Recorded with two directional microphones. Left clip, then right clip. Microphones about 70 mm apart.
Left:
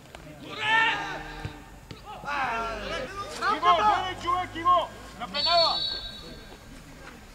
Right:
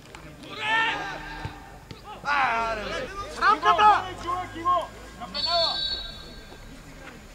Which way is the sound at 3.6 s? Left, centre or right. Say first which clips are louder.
Right 2 dB; right.